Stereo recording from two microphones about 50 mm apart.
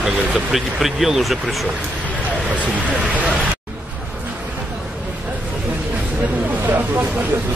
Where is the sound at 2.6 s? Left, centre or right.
Right.